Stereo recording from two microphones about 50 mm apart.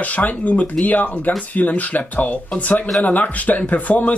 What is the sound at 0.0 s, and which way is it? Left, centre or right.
Speech, left.